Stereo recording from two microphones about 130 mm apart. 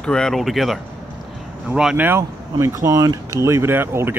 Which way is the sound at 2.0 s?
20° right (ahead or behind).